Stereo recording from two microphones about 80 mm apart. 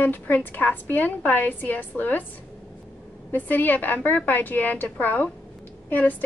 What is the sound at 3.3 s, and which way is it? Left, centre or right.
A woman's voice, left.